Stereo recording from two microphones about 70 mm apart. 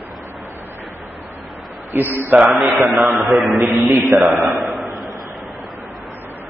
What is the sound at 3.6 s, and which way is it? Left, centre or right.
Speech, right.